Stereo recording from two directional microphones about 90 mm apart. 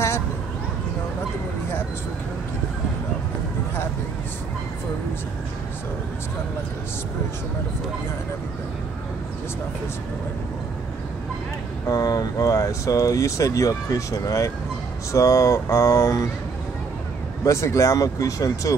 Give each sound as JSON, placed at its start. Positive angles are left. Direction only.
{"t": 11.9, "sound": "speech", "side_deg": 45}
{"t": 17.5, "sound": "speech", "side_deg": 30}